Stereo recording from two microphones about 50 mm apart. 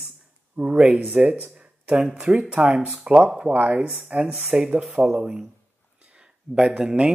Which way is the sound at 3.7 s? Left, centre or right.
Right.